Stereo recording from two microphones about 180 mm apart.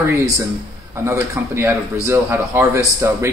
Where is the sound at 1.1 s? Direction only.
15° right (ahead or behind).